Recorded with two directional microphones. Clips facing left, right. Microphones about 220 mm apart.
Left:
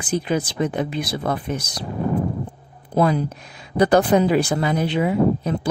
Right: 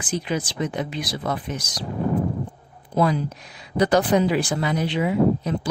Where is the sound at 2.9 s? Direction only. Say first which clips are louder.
Left 2 dB; 50° left (ahead or behind).